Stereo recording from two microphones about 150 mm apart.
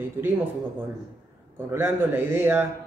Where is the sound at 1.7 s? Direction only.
15° right (ahead or behind).